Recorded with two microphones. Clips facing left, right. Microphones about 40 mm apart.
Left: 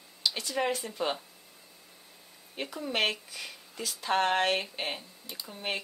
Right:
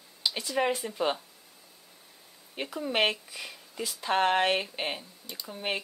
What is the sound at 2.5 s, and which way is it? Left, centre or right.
Speech, centre.